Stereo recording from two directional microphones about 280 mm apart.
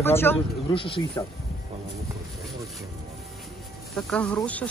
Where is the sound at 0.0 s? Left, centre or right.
Centre.